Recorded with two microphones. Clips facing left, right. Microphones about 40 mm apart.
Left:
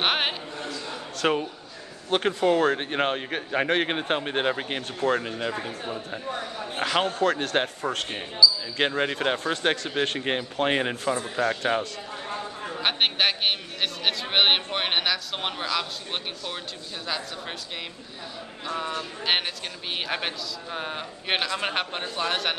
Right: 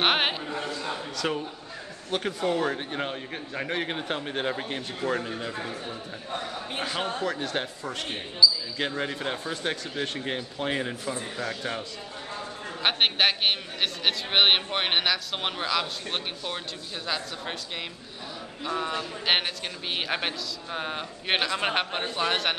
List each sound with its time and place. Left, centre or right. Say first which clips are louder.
0.0 s a sound: right 1 dB; centre
0.5 s a sound: right 3 dB; right
1.1 s a sound: left 7 dB; left
2.0 s a man's voice: left 5 dB; left
4.0 s speech: left 4 dB; left
6.8 s a man's voice: left 6 dB; left
8.4 s speech: left 1 dB; right
8.7 s speech: left 5 dB; left
9.4 s speech: left 5 dB; left
12.8 s a man's voice: right 1 dB; centre
19.2 s a man's voice: even; centre